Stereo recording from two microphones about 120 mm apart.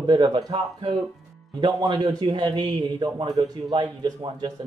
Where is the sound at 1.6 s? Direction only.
35° right (ahead or behind).